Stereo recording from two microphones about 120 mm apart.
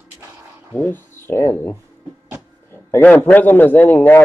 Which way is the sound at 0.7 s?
20° left (ahead or behind).